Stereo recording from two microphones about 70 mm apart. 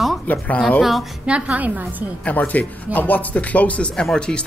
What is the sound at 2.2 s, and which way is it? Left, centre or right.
Speech, left.